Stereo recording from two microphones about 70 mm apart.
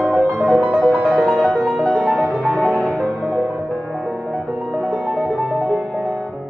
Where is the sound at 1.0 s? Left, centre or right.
Centre.